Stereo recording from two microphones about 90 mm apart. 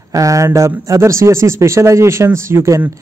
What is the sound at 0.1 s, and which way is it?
A man's voice, 35° right (ahead or behind).